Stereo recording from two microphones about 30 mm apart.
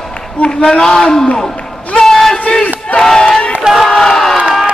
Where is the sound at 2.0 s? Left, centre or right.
Centre.